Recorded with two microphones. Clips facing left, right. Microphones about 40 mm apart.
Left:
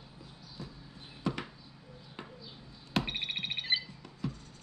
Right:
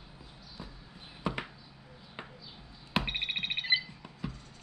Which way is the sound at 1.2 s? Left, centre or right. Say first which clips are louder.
Even; centre.